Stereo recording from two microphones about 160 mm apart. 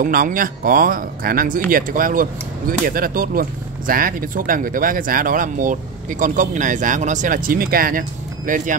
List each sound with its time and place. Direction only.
0.0 s speech: 60° right (ahead or behind)
8.5 s speech: 55° right (ahead or behind)